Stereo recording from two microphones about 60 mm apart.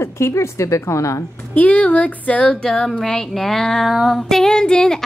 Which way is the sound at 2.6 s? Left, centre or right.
Centre.